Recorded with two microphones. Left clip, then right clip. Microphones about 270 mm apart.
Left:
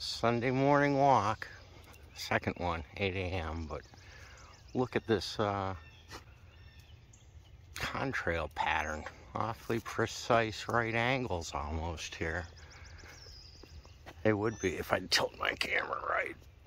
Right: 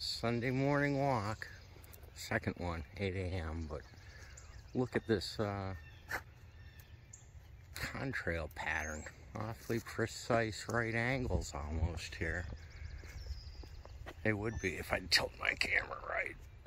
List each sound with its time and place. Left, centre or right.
0.0 s speech: centre
7.8 s speech: centre
14.2 s speech: centre